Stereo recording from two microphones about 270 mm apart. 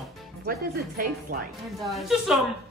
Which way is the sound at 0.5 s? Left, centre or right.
Right.